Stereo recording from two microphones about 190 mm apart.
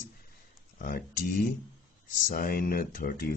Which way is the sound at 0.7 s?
50° left (ahead or behind).